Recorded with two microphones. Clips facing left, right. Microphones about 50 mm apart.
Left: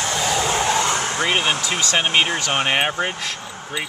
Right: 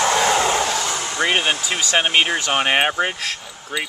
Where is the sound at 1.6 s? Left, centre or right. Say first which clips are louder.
Right 1 dB; centre.